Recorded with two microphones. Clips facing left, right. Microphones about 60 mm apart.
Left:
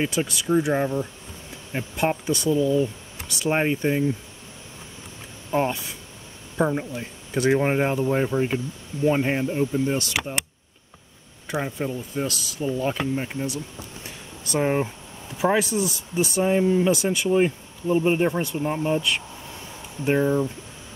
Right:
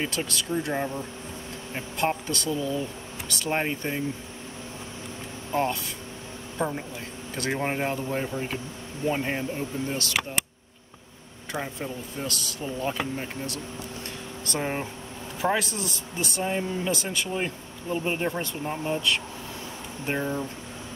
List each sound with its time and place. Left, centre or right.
0.0 s speech: centre
5.5 s speech: centre
10.4 s speech: centre
11.5 s speech: centre
14.0 s a sound: centre
15.4 s speech: centre